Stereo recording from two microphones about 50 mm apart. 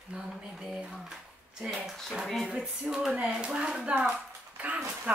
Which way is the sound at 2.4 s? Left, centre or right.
Centre.